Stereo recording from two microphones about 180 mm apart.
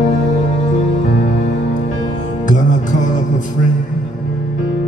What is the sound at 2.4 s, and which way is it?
Music, 45° left (ahead or behind).